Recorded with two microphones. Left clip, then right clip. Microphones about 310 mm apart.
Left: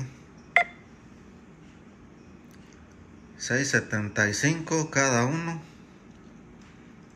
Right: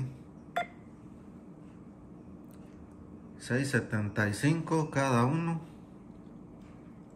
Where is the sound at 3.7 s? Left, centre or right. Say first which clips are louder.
Left 6 dB; centre.